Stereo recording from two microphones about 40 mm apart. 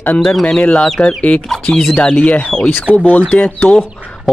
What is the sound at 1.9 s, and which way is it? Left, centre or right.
Speech, left.